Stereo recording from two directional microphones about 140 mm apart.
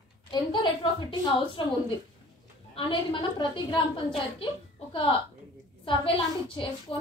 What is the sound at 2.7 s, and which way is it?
A woman's voice, 35° left (ahead or behind).